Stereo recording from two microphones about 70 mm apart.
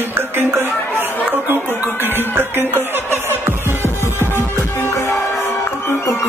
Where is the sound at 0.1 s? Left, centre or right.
Right.